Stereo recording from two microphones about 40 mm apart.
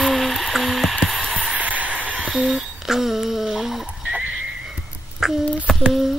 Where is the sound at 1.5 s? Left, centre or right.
Right.